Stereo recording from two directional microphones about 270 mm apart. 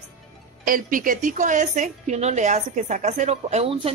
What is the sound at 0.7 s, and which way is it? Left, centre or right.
A woman's voice, right.